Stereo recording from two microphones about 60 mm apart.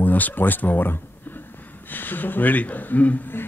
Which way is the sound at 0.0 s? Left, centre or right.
Left.